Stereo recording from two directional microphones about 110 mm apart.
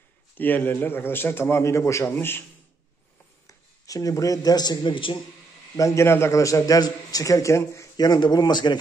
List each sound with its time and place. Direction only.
0.4 s a man's voice: 15° left (ahead or behind)
3.4 s a man's voice: 30° left (ahead or behind); by 5.2 s 50° left (ahead or behind)
5.8 s a man's voice: 25° left (ahead or behind)